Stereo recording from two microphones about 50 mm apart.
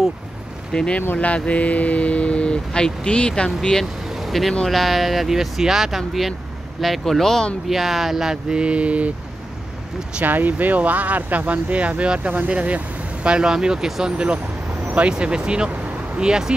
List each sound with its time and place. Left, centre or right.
0.7 s speech: centre
4.1 s vehicle: centre
4.6 s speech: centre; by 9.1 s right
10.2 s speech: right; by 14.1 s centre
14.1 s speech: right